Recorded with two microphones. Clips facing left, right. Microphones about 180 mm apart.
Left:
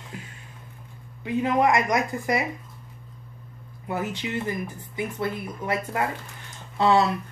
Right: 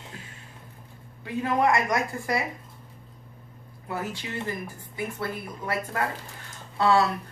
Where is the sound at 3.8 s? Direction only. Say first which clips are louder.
Left 4 dB; 20° left (ahead or behind).